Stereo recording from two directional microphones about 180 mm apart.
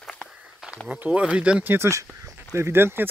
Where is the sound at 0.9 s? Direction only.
10° right (ahead or behind).